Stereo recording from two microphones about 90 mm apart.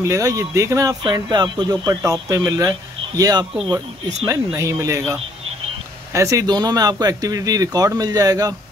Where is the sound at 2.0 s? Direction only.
35° right (ahead or behind).